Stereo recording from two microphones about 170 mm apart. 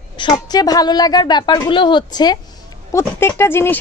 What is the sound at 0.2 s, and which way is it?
A woman's voice, 25° left (ahead or behind).